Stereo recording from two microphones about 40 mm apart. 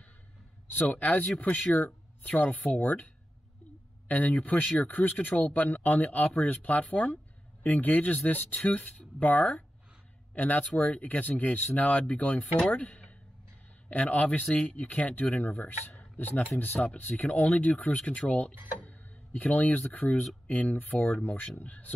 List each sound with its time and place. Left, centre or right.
0.7 s speech: left
4.1 s speech: left